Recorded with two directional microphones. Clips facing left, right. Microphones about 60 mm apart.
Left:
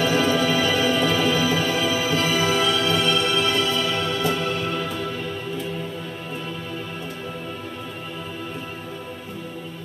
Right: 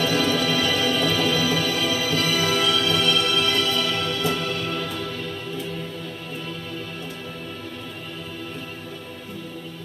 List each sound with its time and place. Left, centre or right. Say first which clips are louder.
0.0 s music: left 2 dB; left